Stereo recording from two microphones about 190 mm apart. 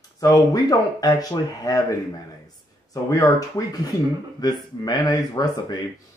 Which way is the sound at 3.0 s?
15° left (ahead or behind).